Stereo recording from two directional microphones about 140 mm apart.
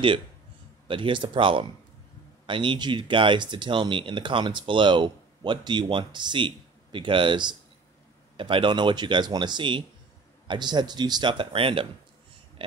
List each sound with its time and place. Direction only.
0.8 s speech: 35° right (ahead or behind)